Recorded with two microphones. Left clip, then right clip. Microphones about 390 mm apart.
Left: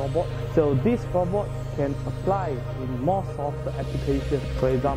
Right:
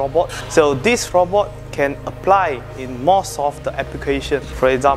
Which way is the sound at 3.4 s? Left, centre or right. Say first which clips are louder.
Right 10 dB; centre.